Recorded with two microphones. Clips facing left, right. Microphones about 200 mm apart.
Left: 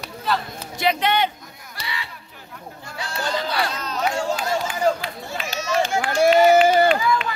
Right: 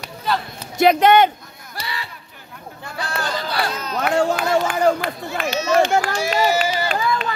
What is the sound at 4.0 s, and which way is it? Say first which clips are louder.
Run: right 5 dB; 60° right (ahead or behind).